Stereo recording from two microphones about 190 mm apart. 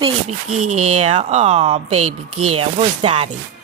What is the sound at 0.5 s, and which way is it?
Speech, 40° right (ahead or behind).